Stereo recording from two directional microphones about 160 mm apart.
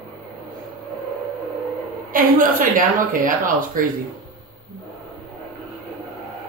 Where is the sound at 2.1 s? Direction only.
60° right (ahead or behind).